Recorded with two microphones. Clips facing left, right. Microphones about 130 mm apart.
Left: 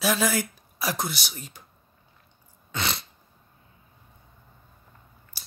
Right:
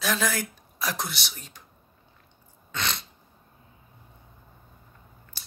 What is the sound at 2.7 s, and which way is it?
Sneeze, 5° left (ahead or behind).